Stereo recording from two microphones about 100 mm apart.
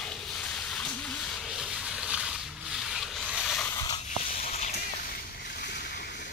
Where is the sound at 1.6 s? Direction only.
10° right (ahead or behind).